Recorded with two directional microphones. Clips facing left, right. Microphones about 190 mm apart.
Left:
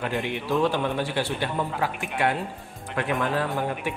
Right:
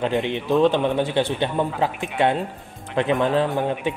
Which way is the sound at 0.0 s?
20° right (ahead or behind).